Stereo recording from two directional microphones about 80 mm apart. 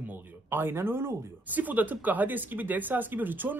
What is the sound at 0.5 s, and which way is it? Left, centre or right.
A man's voice, right.